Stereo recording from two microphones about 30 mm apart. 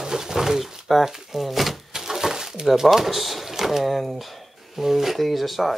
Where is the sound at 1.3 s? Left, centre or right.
Centre.